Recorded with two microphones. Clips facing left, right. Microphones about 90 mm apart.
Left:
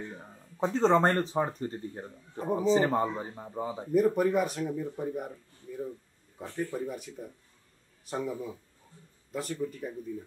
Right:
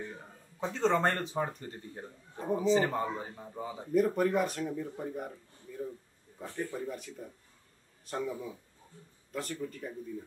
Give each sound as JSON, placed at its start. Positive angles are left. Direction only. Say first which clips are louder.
{"t": 0.6, "sound": "speech", "louder": "left 5 dB", "side_deg": 40}
{"t": 4.1, "sound": "speech", "louder": "left 2 dB", "side_deg": 5}